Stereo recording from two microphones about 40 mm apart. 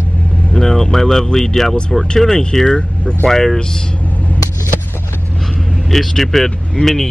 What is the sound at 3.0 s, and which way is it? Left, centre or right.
Speech, left.